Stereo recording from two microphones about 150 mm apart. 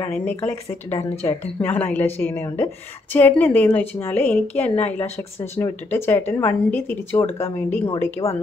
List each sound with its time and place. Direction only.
0.0 s a woman's voice: 15° left (ahead or behind)
0.9 s speech: 45° left (ahead or behind)
1.6 s a woman's voice: 10° left (ahead or behind)